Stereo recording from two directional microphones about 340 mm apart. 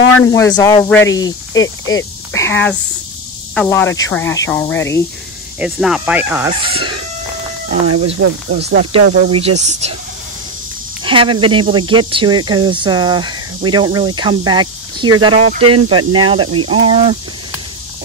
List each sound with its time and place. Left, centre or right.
0.6 s speech: centre
1.5 s speech: left
2.3 s speech: centre
7.8 s speech: right
8.2 s speech: right
11.1 s speech: centre
15.4 s speech: right
16.3 s speech: centre